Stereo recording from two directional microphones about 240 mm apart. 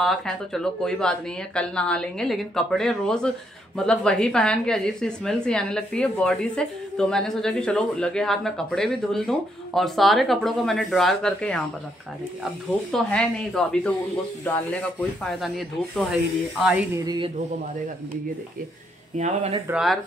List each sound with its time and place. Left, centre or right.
0.0 s a woman's voice: centre
12.9 s a woman's voice: centre
15.2 s a woman's voice: centre
17.0 s speech: centre
19.1 s speech: right
19.7 s a woman's voice: centre